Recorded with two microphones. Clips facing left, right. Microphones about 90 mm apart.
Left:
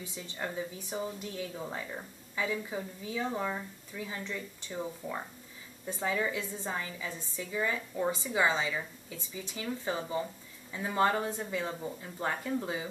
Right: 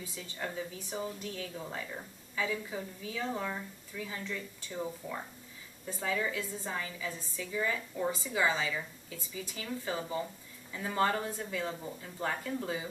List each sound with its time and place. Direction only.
0.0 s a woman's voice: 20° left (ahead or behind)
5.9 s a woman's voice: 20° left (ahead or behind)